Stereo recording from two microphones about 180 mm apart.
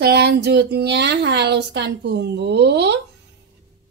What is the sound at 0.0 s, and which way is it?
A woman's voice, 65° right (ahead or behind).